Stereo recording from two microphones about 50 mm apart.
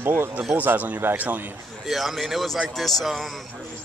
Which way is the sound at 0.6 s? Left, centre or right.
Right.